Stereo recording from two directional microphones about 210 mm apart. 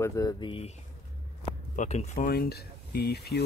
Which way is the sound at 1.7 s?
35° left (ahead or behind).